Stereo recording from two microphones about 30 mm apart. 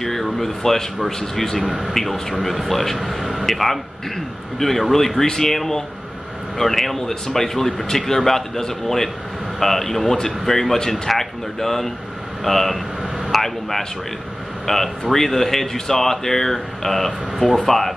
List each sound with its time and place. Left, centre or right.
0.0 s speech: centre
1.6 s a man's voice: centre
2.4 s speech: centre
3.0 s a man's voice: centre
5.2 s a man's voice: left